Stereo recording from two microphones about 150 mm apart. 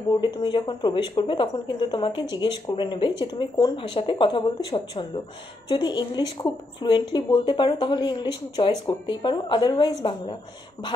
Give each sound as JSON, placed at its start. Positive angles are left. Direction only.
{"t": 0.2, "sound": "speech", "side_deg": 30}